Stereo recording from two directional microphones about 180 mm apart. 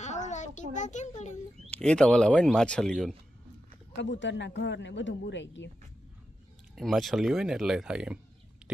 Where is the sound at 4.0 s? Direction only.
85° left.